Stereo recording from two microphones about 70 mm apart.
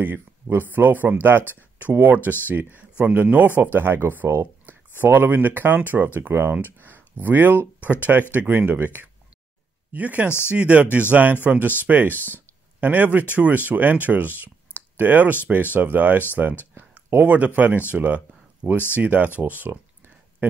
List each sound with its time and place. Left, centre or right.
0.0 s speech: right
12.1 s speech: left
12.8 s speech: right